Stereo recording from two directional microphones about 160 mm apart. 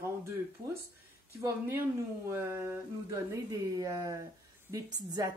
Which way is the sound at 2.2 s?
15° right (ahead or behind).